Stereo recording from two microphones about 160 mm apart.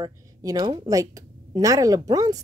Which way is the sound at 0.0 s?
25° right (ahead or behind).